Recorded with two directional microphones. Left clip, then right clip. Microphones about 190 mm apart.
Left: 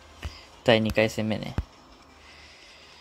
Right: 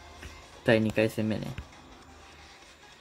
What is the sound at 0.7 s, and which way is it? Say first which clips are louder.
Speech: left 3 dB; 20° left (ahead or behind).